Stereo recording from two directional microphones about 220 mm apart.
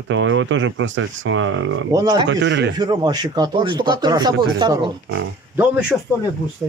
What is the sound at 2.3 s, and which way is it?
Speech, 55° right (ahead or behind).